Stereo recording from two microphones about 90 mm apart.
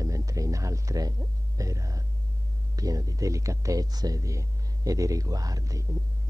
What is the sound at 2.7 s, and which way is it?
Speech, 40° right (ahead or behind).